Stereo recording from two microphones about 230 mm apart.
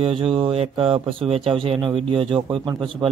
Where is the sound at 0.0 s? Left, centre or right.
Right.